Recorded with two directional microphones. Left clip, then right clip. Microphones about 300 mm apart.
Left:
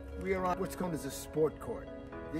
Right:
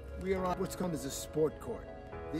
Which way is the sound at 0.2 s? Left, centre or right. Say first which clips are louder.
Left 1 dB; centre.